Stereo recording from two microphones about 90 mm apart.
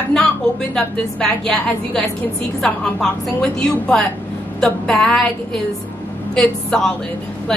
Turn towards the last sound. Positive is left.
turn(degrees=5)  # may be behind; listen again after turning